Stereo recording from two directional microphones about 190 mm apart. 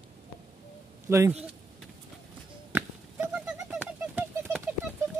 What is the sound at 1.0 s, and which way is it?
Speech, 15° right (ahead or behind).